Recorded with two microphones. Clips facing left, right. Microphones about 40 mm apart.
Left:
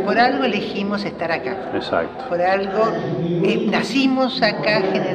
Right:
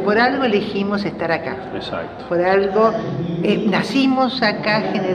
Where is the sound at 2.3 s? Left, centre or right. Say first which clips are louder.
Right 3 dB; centre.